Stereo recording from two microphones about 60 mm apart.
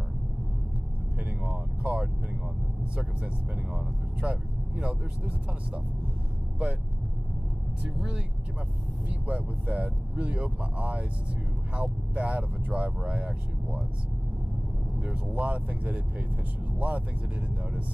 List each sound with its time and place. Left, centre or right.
1.4 s speech: centre
3.7 s speech: centre
7.8 s speech: centre
9.3 s speech: right
15.0 s speech: right